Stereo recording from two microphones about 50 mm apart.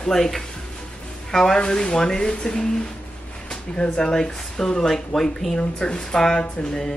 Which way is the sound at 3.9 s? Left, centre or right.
Centre.